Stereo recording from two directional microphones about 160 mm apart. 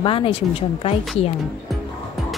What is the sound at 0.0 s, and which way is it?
A woman's voice, 35° left (ahead or behind).